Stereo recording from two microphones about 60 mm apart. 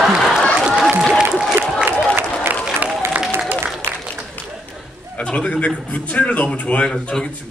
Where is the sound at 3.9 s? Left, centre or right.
Right.